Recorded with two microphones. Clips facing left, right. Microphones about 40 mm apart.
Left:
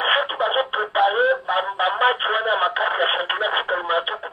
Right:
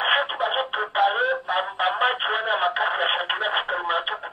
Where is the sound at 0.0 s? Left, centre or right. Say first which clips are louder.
Left 2 dB; centre.